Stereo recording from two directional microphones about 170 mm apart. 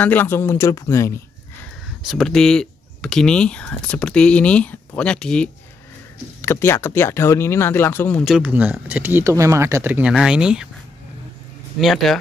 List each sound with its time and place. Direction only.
0.0 s speech: 10° left (ahead or behind)
2.0 s speech: 5° left (ahead or behind)
8.3 s speech: 10° right (ahead or behind)
11.8 s speech: centre (ahead or behind)